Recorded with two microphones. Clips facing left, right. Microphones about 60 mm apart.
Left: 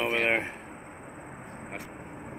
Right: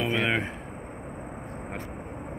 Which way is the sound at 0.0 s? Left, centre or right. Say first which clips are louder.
Even; left.